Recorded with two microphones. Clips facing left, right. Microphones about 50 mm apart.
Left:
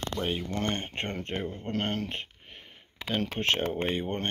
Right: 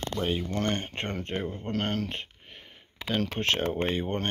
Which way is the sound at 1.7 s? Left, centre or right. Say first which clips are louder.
Right 1 dB; left.